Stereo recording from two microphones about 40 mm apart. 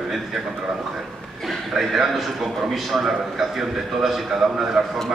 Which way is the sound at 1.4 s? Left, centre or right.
Centre.